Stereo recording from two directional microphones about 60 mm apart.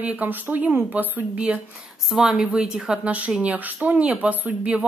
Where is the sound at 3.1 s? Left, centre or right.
Right.